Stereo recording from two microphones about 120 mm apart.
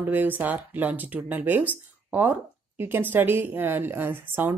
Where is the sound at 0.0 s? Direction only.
15° right (ahead or behind).